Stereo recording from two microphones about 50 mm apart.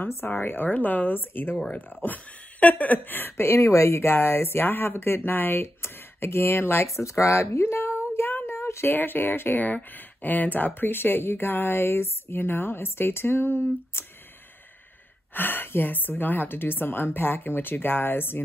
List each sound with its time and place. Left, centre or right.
0.0 s speech: left
6.9 s speech: left
8.2 s a sound: left
8.9 s speech: left
15.3 s speech: left